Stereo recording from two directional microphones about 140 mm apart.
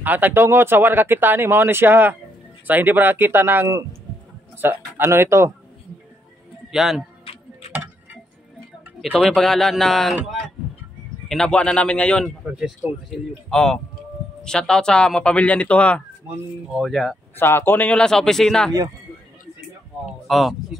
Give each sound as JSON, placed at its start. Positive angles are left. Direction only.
{"t": 0.0, "sound": "speech", "side_deg": -15}
{"t": 6.7, "sound": "speech", "side_deg": 0}
{"t": 7.7, "sound": "tick-tock", "side_deg": -10}
{"t": 9.0, "sound": "speech", "side_deg": 0}
{"t": 11.2, "sound": "speech", "side_deg": 5}
{"t": 12.5, "sound": "speech", "side_deg": -5}
{"t": 13.5, "sound": "speech", "side_deg": 5}
{"t": 17.4, "sound": "speech", "side_deg": 15}
{"t": 20.2, "sound": "speech", "side_deg": 0}